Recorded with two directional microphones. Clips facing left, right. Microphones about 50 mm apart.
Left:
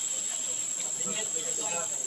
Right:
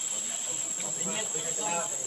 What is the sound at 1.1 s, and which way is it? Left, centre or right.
Cricket, right.